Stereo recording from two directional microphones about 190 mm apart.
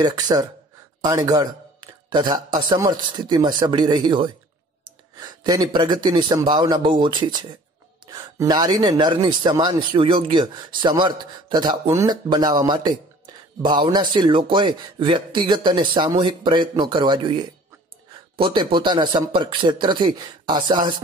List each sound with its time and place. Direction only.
0.0 s speech: 20° right (ahead or behind)